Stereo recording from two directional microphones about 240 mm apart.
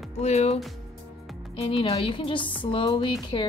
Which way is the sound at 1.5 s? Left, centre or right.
Left.